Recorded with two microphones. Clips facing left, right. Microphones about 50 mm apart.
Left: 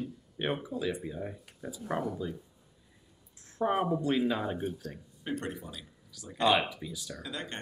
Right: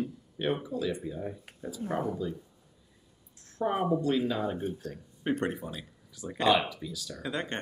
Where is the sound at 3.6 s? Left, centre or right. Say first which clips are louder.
Right 1 dB; centre.